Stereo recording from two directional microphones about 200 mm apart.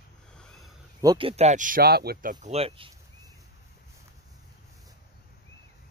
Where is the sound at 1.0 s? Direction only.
25° right (ahead or behind).